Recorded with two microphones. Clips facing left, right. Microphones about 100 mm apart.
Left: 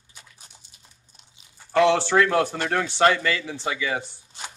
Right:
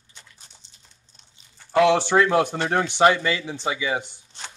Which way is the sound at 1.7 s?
15° right (ahead or behind).